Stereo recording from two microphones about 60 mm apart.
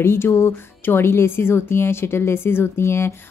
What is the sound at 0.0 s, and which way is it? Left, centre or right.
Speech, left.